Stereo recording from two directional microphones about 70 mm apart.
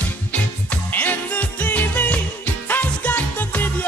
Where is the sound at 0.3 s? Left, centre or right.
Left.